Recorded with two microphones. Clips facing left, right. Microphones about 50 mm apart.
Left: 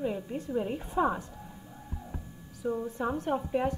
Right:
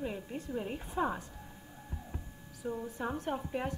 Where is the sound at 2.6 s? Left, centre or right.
Centre.